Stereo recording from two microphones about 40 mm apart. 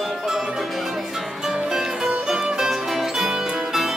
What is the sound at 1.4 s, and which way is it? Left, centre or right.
Music, centre.